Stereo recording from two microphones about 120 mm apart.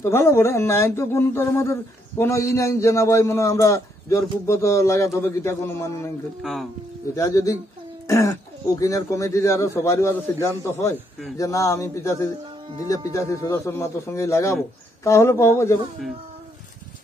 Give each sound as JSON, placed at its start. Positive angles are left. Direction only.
{"t": 0.0, "sound": "speech", "side_deg": 20}
{"t": 6.4, "sound": "speech", "side_deg": 0}
{"t": 7.2, "sound": "speech", "side_deg": 25}